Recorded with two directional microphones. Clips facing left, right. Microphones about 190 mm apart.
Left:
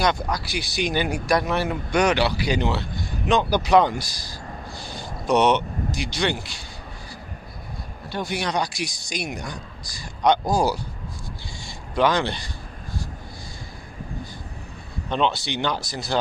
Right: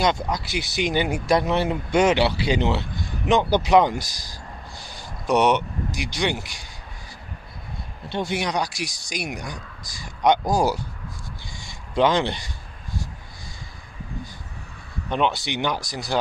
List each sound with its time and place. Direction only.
0.0 s speech: 20° right (ahead or behind)
8.1 s speech: 25° right (ahead or behind)
11.6 s a sound: 20° right (ahead or behind)
15.0 s speech: 10° right (ahead or behind)